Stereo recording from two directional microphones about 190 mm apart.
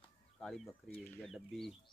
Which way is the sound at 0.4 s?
5° left (ahead or behind).